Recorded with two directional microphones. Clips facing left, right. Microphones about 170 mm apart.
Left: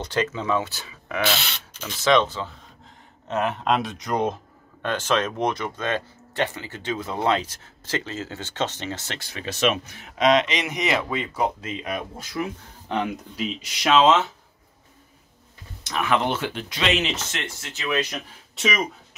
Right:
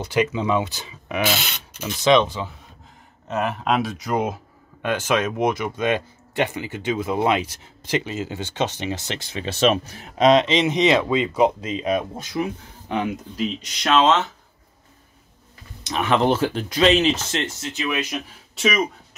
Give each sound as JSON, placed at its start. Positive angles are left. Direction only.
{"t": 0.0, "sound": "speech", "side_deg": -10}
{"t": 3.3, "sound": "speech", "side_deg": 0}
{"t": 12.8, "sound": "speech", "side_deg": -5}
{"t": 15.8, "sound": "speech", "side_deg": -25}